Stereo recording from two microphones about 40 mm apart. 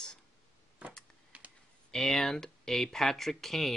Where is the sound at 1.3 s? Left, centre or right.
Right.